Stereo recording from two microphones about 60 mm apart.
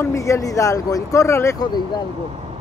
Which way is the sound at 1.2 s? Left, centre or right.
Left.